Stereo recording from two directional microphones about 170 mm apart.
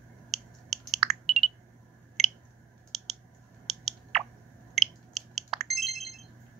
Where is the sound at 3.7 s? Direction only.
Centre (ahead or behind).